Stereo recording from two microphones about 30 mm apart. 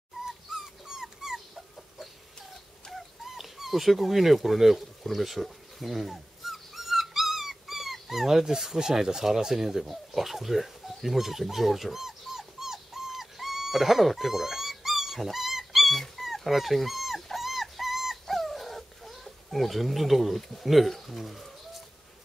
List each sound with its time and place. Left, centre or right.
0.2 s dog: centre
2.9 s dog: centre
8.7 s speech: centre
10.1 s dog: centre
21.2 s speech: centre